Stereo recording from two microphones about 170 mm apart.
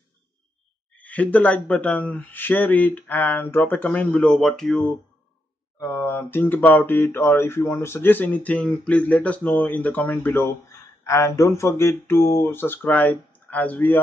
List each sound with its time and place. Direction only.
0.9 s speech: 10° left (ahead or behind)